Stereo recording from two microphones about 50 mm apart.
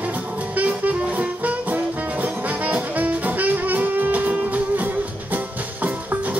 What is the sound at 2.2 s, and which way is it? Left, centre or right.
Brass instrument, right.